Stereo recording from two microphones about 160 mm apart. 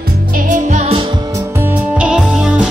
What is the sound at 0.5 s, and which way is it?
Music, 50° right (ahead or behind).